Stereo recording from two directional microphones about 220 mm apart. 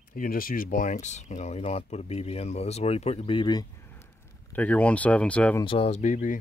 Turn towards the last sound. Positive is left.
turn(degrees=35)  # may be behind; listen again after turning